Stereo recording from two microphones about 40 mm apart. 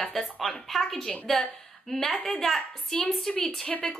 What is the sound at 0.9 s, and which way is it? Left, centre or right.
Speech, left.